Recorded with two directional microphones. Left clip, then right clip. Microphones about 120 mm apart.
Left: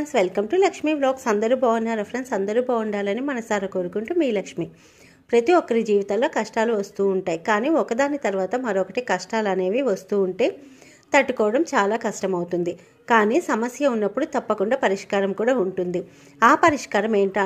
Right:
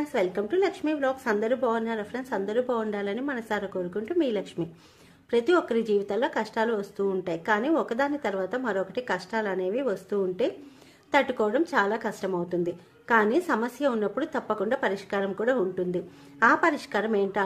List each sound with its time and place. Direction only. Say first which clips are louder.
0.1 s a woman's voice: left 7 dB; 35° left (ahead or behind)